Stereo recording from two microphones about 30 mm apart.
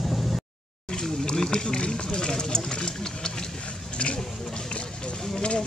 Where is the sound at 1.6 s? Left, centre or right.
Left.